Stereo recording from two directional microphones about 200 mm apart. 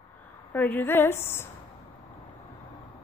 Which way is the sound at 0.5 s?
10° left (ahead or behind).